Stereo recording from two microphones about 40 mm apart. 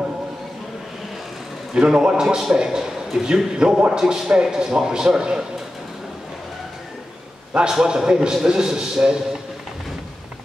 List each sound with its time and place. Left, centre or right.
1.7 s a man's voice: centre
7.7 s a man's voice: centre